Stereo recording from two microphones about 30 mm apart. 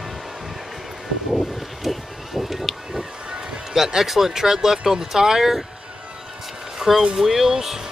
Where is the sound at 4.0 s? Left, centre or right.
Centre.